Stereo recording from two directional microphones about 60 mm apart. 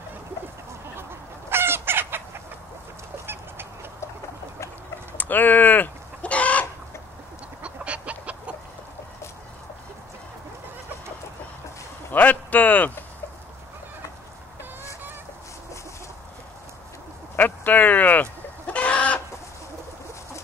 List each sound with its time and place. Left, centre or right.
1.5 s chicken: right
5.1 s chicken: left
7.6 s chicken: right
12.1 s a sound: left
17.4 s chicken: left